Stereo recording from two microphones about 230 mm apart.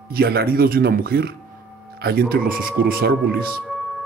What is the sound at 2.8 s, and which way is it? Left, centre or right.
Speech, right.